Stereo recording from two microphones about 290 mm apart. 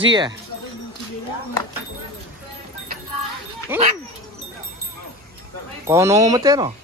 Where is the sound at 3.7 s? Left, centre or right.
Centre.